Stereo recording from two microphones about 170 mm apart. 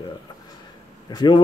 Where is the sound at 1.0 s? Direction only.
25° left (ahead or behind).